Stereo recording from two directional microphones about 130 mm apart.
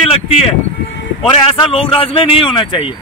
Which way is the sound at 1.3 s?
45° left (ahead or behind).